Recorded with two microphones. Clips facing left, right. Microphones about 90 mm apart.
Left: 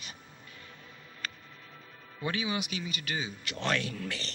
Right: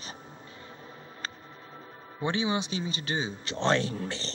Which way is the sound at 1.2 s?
30° right (ahead or behind).